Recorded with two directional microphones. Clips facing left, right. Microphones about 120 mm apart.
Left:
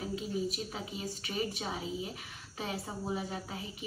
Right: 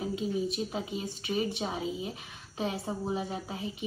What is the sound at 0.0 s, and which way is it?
A woman's voice, 20° right (ahead or behind).